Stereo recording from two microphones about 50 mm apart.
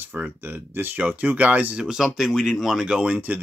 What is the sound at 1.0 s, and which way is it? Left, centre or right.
Speech, right.